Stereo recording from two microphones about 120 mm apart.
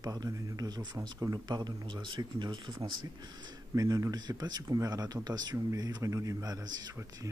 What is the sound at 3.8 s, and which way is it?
Speech, 30° right (ahead or behind).